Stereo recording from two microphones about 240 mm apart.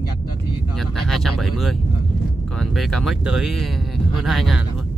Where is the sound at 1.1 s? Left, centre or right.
Centre.